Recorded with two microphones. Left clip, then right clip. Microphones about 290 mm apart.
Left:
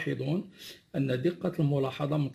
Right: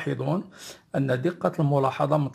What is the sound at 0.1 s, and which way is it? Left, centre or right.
Speech, centre.